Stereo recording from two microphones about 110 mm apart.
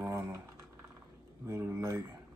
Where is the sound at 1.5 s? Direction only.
25° right (ahead or behind).